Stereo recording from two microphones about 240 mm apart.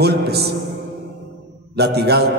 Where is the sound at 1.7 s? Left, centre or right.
Right.